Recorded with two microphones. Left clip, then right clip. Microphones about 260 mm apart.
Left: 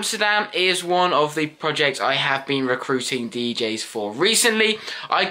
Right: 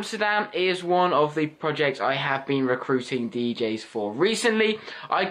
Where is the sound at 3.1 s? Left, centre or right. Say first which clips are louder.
Left 3 dB; centre.